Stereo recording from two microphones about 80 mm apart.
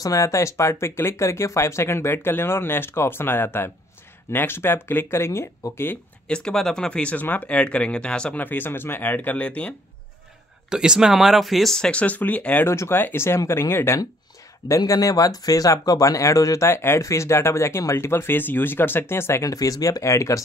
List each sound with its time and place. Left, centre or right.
0.0 s speech: left
6.2 s speech: centre
10.7 s speech: centre
12.6 s speech: left
14.9 s speech: left
19.4 s speech: left